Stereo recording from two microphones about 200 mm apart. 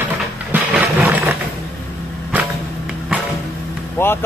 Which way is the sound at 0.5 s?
10° right (ahead or behind).